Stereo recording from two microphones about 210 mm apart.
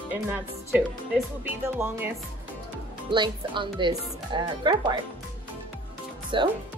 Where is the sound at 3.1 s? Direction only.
20° right (ahead or behind).